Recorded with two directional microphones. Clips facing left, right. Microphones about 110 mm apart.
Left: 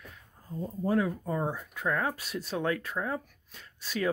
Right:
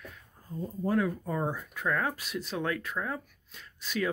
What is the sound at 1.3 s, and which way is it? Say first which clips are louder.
Speech: even; 10° left (ahead or behind).